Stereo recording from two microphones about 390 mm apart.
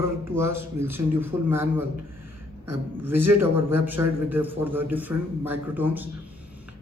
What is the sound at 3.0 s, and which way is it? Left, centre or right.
A man's voice, centre.